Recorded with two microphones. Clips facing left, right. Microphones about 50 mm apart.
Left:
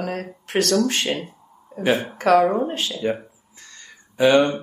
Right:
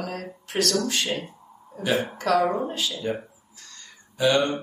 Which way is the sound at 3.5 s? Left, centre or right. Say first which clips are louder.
Left 3 dB; left.